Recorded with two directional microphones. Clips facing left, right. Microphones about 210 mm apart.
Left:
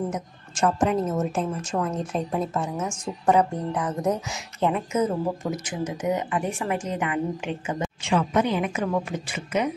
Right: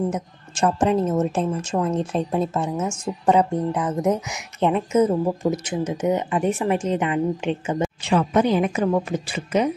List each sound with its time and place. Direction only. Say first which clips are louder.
0.1 s a woman's voice: right 3 dB; 30° right (ahead or behind)